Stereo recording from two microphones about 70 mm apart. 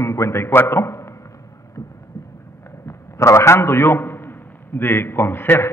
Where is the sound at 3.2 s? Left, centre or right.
Left.